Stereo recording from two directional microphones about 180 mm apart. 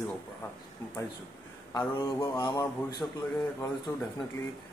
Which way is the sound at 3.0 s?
5° left (ahead or behind).